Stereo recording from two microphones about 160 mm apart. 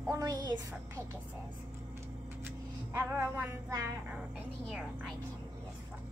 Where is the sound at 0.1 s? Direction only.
25° right (ahead or behind).